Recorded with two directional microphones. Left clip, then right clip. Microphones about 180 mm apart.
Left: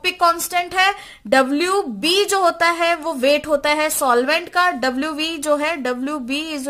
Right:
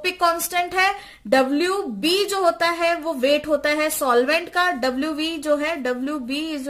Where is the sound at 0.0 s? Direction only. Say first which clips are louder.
Left 3 dB; 30° left (ahead or behind).